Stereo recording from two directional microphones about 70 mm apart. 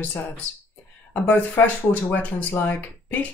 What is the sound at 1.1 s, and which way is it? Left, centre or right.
Speech, left.